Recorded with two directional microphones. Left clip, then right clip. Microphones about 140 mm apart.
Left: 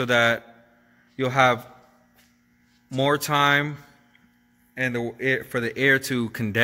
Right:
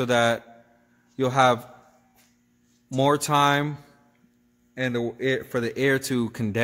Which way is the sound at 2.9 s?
30° right (ahead or behind).